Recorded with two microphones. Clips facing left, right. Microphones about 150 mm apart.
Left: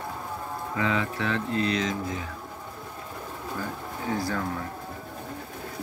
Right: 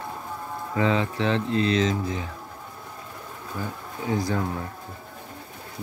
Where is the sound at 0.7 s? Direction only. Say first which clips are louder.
Right 4 dB; 30° right (ahead or behind).